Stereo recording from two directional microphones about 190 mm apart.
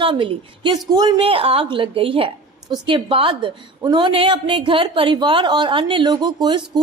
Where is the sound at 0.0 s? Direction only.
25° right (ahead or behind).